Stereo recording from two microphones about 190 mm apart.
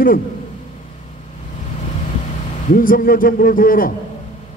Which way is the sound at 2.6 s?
45° left (ahead or behind).